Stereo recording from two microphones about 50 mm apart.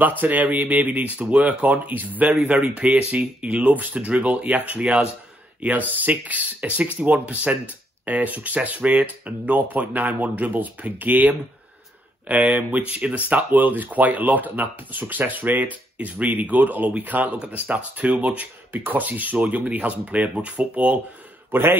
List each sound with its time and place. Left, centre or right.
0.2 s speech: right
18.7 s speech: right
21.5 s speech: right